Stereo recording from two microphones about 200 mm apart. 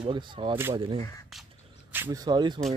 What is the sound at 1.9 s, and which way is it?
Speech, 15° right (ahead or behind).